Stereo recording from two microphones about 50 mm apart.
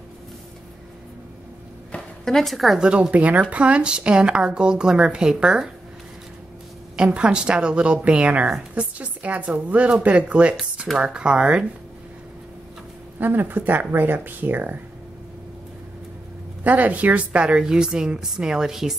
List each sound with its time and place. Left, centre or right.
2.2 s a woman's voice: centre
2.8 s speech: centre
7.0 s speech: right
13.2 s speech: right
16.6 s a woman's voice: right; by 18.9 s centre